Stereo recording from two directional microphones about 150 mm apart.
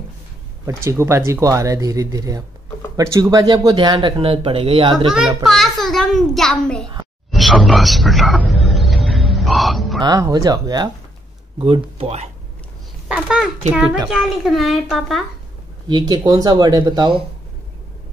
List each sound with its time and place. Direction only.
0.8 s speech: 20° right (ahead or behind); by 4.9 s 40° right (ahead or behind)
4.9 s a child's voice: centre (ahead or behind)
8.5 s music: centre (ahead or behind)
9.9 s speech: 25° right (ahead or behind)
11.5 s speech: 40° right (ahead or behind)
13.1 s a child's voice: 5° right (ahead or behind)
15.9 s speech: 25° right (ahead or behind)